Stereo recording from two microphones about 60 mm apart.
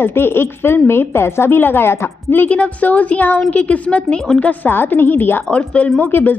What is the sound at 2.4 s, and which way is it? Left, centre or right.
A woman's voice, left.